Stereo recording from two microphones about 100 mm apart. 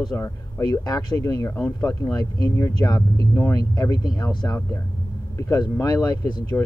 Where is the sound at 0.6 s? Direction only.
40° left (ahead or behind).